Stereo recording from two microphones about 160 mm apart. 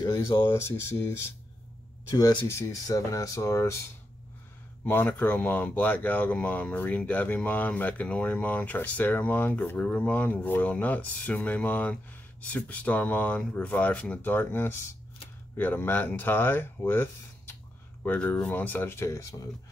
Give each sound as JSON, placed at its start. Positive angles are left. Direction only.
{"t": 0.0, "sound": "speech", "side_deg": 20}
{"t": 2.0, "sound": "speech", "side_deg": 20}
{"t": 4.8, "sound": "speech", "side_deg": 10}